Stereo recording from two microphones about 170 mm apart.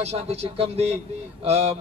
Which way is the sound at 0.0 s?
35° right (ahead or behind).